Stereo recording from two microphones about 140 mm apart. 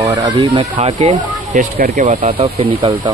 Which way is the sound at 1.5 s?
70° right (ahead or behind).